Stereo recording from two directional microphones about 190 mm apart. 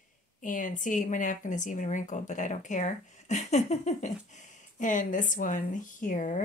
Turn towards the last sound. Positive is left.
turn(degrees=40)  # may be behind; listen again after turning